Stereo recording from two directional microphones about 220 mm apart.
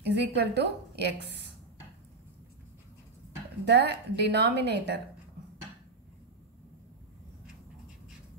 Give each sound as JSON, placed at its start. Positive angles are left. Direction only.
{"t": 0.1, "sound": "a woman's voice", "side_deg": -50}
{"t": 3.6, "sound": "a woman's voice", "side_deg": -50}